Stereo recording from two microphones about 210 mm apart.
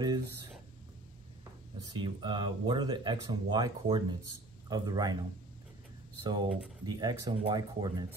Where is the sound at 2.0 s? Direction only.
20° right (ahead or behind).